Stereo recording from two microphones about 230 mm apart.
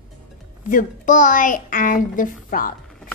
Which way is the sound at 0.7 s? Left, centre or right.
Left.